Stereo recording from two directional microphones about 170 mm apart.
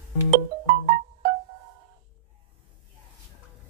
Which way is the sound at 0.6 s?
65° right (ahead or behind).